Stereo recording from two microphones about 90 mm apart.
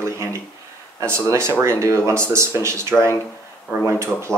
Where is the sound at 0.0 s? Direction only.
30° right (ahead or behind).